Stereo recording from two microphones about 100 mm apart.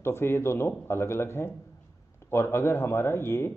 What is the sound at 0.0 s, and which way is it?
Speech, 25° left (ahead or behind).